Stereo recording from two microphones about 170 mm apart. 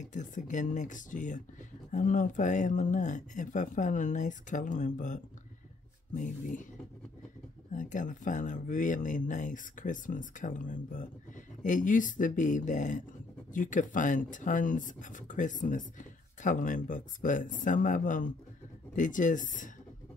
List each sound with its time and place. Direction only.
0.0 s speech: 45° left (ahead or behind)
7.7 s speech: 50° left (ahead or behind)